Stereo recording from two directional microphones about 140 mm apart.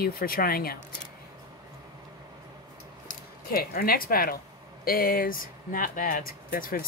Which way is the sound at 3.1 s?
90° left.